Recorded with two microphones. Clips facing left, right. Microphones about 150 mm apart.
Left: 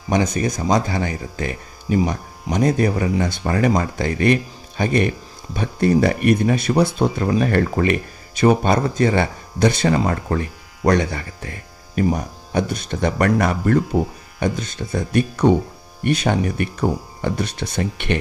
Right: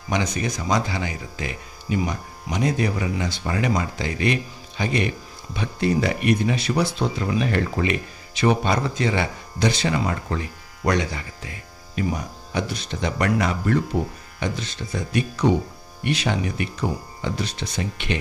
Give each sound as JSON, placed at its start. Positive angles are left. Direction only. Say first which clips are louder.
{"t": 0.1, "sound": "speech", "louder": "left 5 dB", "side_deg": 45}